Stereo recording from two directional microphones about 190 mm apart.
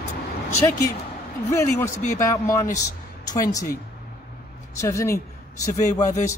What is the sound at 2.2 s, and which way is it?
Speech, 15° left (ahead or behind).